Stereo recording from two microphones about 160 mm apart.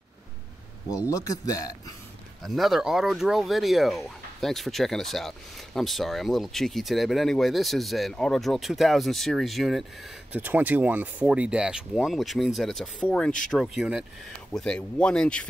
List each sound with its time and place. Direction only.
1.1 s speech: 20° left (ahead or behind)
2.4 s speech: centre (ahead or behind)
10.3 s speech: 10° right (ahead or behind); by 15.4 s 5° left (ahead or behind)